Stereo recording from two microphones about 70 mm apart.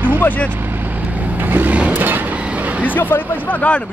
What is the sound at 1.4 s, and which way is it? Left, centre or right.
Vehicle, right.